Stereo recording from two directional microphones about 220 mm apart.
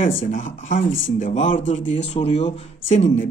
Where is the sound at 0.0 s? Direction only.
35° left (ahead or behind).